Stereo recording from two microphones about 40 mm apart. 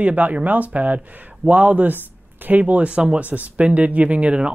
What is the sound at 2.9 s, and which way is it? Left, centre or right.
Speech, right.